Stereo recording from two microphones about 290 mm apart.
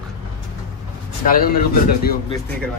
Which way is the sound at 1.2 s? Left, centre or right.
Left.